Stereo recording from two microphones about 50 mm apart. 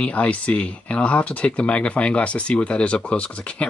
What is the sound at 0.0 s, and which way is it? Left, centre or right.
Speech, left.